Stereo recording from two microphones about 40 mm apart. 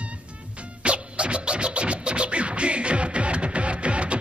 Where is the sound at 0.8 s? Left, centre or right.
Right.